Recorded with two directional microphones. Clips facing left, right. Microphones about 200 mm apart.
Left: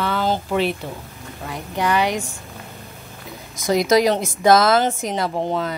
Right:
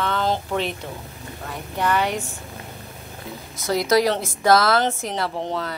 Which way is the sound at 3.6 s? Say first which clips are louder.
Left 3 dB; 20° left (ahead or behind).